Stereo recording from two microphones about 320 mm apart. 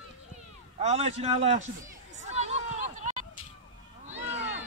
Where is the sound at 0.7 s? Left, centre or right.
Centre.